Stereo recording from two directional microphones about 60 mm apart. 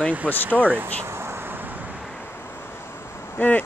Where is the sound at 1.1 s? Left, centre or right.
Right.